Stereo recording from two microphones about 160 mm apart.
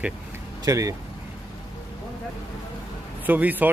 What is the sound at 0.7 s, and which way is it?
Speech, 20° right (ahead or behind).